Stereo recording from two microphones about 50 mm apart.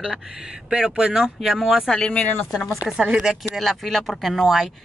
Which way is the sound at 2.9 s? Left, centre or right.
Centre.